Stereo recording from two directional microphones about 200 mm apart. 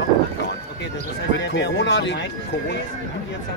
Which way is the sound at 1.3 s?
60° left (ahead or behind).